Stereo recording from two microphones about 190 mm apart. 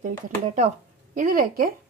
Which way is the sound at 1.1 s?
45° right (ahead or behind).